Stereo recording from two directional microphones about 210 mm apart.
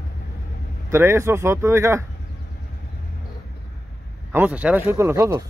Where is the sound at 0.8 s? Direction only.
10° right (ahead or behind).